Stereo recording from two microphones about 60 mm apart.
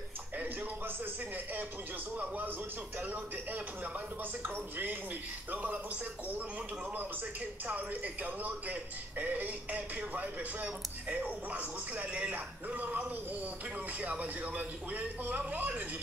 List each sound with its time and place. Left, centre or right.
0.4 s speech: right
7.6 s speech: right